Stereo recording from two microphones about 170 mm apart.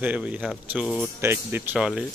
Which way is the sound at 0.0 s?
10° right (ahead or behind).